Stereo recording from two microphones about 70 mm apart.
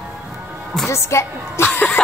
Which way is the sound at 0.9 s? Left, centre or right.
Left.